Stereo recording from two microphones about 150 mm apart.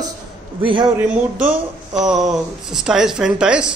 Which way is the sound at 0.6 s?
35° right (ahead or behind).